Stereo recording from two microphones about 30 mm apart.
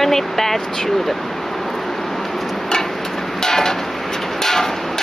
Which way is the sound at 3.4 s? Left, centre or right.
Centre.